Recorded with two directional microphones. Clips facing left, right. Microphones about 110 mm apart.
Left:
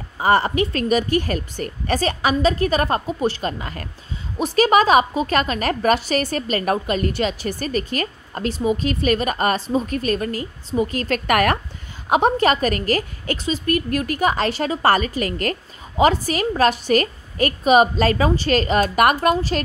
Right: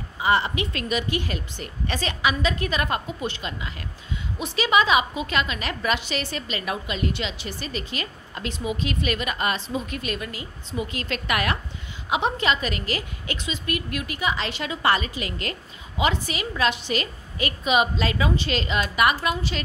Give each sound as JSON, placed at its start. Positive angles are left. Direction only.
{"t": 0.2, "sound": "a woman's voice", "side_deg": 45}